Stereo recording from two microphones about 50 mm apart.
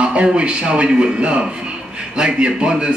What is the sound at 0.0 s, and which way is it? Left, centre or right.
A man's voice, right.